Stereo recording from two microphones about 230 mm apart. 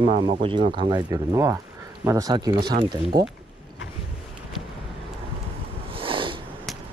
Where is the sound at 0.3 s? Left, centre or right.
Right.